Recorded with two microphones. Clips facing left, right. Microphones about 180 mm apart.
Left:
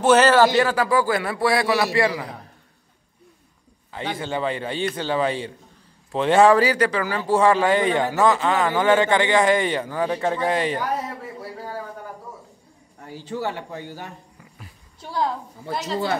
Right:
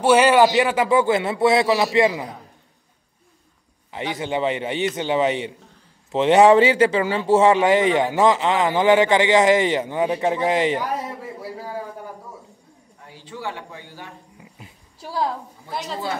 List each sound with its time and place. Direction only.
0.0 s a man's voice: 10° right (ahead or behind)
3.9 s speech: 20° right (ahead or behind)
13.0 s a man's voice: 45° left (ahead or behind)
15.0 s a woman's voice: 5° right (ahead or behind)